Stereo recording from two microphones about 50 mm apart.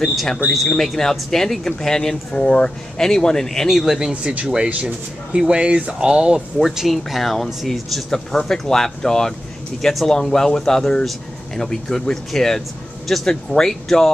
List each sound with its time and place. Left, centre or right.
0.0 s speech: centre
4.1 s speech: right
6.6 s speech: centre
8.1 s speech: centre